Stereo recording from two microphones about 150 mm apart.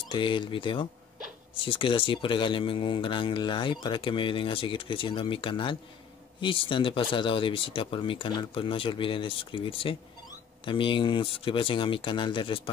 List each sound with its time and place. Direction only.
0.1 s speech: 35° left (ahead or behind)